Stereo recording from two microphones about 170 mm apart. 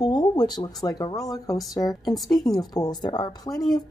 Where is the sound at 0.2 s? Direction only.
25° left (ahead or behind).